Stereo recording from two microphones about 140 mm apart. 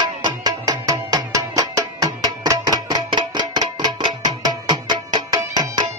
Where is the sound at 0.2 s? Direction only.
30° right (ahead or behind).